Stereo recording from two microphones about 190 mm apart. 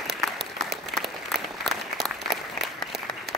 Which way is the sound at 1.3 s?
Centre (ahead or behind).